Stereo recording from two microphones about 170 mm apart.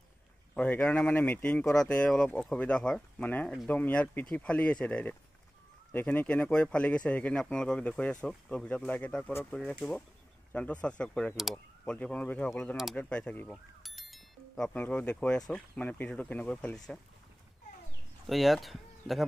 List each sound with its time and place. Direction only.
0.6 s speech: 10° left (ahead or behind)
18.2 s speech: centre (ahead or behind)